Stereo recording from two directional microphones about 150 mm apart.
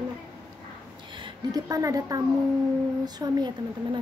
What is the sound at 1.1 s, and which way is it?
A woman's voice, 30° right (ahead or behind).